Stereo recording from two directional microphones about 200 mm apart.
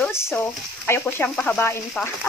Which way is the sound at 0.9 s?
10° left (ahead or behind).